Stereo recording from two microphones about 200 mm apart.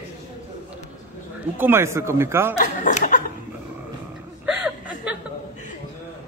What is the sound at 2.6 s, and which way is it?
Speech, 40° left (ahead or behind).